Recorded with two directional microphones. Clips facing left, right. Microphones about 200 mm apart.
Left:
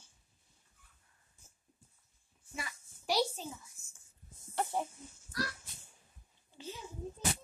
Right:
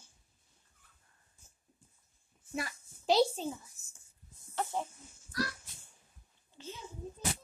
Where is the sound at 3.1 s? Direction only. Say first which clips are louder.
Right 5 dB; 25° right (ahead or behind).